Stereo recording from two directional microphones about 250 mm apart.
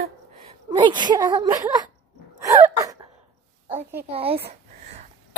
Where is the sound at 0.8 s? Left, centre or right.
Centre.